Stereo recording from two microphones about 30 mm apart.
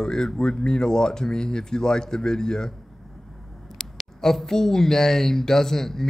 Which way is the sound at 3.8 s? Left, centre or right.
Centre.